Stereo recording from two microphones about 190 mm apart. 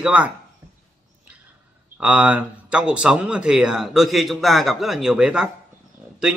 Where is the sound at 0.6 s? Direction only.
20° right (ahead or behind).